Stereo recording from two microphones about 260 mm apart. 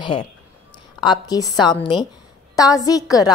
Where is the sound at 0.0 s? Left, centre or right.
Centre.